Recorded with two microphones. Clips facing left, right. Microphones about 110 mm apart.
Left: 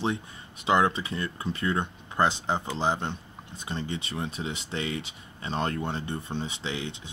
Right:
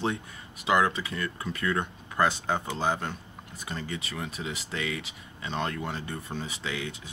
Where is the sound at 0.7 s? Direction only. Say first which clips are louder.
Left 1 dB; 30° left (ahead or behind).